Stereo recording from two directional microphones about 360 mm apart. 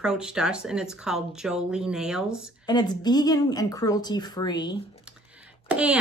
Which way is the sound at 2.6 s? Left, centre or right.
Centre.